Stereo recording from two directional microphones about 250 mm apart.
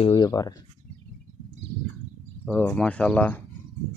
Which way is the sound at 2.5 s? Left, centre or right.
Centre.